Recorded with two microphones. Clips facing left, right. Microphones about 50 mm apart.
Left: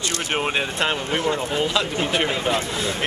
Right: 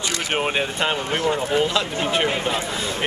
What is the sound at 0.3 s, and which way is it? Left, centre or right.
Speech, centre.